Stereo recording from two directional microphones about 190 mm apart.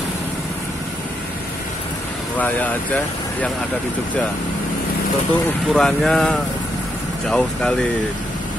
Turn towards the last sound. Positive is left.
turn(degrees=5)  # may be behind; listen again after turning